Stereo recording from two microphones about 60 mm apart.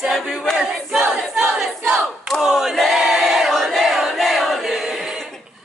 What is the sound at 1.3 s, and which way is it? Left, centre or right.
Battle cry, centre.